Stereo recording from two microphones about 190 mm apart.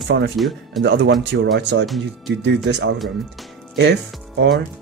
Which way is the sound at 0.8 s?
65° right (ahead or behind).